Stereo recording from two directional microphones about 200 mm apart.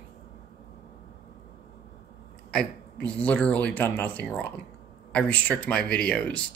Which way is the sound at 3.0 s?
5° left (ahead or behind).